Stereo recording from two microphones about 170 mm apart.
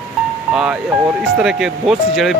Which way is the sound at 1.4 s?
5° right (ahead or behind).